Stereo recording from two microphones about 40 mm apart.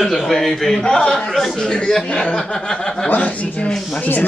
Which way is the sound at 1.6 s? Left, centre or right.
Centre.